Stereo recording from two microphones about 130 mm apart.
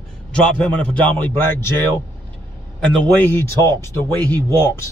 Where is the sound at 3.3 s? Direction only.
20° left (ahead or behind).